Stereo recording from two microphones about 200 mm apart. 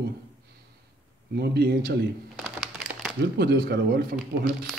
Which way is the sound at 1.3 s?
55° right (ahead or behind).